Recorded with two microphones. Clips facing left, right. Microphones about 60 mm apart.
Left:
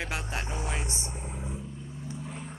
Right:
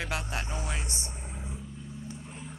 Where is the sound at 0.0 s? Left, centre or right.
Centre.